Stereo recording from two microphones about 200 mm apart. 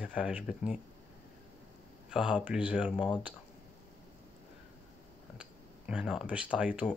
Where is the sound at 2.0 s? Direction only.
5° right (ahead or behind).